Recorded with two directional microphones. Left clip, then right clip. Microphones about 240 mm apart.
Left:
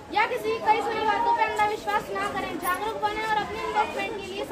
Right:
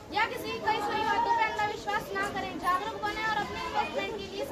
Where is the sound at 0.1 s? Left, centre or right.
Centre.